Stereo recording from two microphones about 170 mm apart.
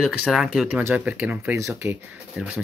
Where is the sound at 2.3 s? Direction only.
5° right (ahead or behind).